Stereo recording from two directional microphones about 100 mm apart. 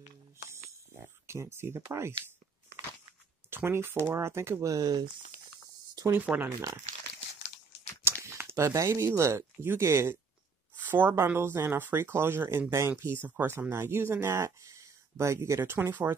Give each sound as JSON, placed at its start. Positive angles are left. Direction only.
{"t": 0.0, "sound": "music", "side_deg": -25}
{"t": 3.4, "sound": "a sound", "side_deg": -25}
{"t": 4.0, "sound": "speech", "side_deg": -25}
{"t": 6.1, "sound": "speech", "side_deg": -20}
{"t": 8.0, "sound": "speech", "side_deg": -25}